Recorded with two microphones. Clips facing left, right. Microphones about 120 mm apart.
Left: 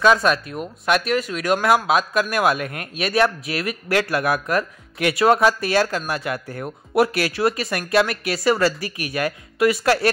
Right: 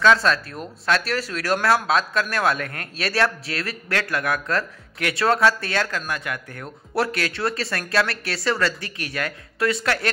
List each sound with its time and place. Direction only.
0.0 s speech: 15° left (ahead or behind)